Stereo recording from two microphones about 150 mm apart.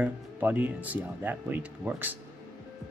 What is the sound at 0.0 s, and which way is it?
Speech, 10° right (ahead or behind).